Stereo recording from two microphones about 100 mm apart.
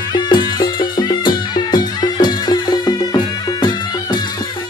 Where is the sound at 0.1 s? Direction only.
45° left (ahead or behind).